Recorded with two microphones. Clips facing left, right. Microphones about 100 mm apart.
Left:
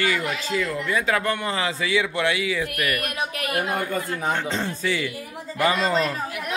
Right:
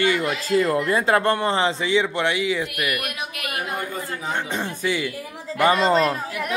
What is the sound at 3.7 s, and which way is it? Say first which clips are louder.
Speech: left 3 dB; 55° left (ahead or behind).